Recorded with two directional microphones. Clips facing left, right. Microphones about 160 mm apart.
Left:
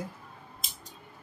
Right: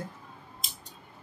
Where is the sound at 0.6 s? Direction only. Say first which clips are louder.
Right 1 dB; centre (ahead or behind).